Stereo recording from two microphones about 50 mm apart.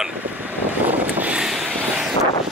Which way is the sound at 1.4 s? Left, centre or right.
Centre.